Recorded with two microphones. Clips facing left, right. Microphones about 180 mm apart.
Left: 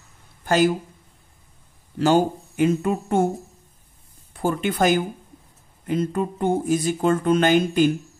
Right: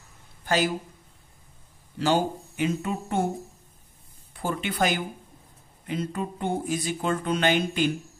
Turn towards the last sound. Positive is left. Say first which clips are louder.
# left 6 dB
turn(degrees=45)  # may be behind; listen again after turning